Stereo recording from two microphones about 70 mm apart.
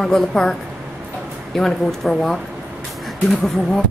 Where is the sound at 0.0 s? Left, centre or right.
Centre.